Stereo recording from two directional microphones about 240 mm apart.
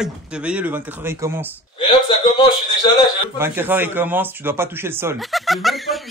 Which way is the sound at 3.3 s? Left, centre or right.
Centre.